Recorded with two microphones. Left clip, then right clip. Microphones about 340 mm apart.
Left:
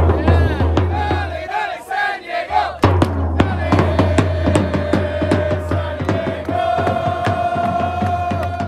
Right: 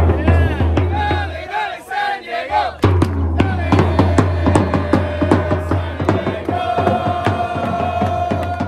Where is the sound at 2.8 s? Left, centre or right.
Centre.